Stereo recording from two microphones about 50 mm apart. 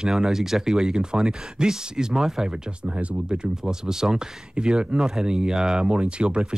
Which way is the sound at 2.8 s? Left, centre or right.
Right.